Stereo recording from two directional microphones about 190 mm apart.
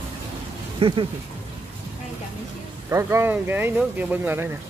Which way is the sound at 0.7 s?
25° right (ahead or behind).